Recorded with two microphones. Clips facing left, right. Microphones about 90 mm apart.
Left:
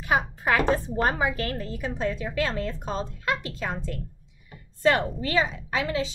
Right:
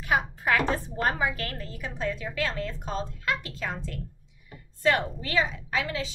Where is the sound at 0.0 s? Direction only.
25° left (ahead or behind).